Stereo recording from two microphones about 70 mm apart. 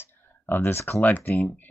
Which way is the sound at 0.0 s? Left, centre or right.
Left.